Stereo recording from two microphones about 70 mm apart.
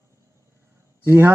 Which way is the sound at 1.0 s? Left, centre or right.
Right.